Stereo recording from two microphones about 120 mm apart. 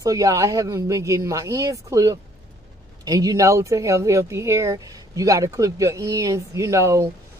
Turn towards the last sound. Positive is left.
turn(degrees=-25)  # may be behind; listen again after turning